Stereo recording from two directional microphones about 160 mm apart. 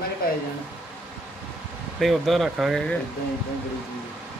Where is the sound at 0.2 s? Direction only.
65° left (ahead or behind).